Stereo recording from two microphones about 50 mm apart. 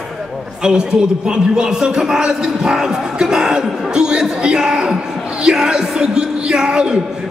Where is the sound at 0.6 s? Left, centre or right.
Centre.